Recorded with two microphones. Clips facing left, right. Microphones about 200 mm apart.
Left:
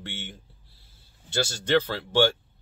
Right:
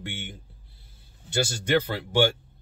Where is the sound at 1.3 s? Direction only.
15° right (ahead or behind).